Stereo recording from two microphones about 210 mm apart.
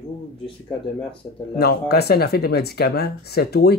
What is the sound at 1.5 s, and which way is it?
Speech, 50° left (ahead or behind).